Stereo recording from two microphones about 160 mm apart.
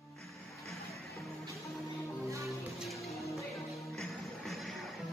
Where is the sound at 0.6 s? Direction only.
Centre (ahead or behind).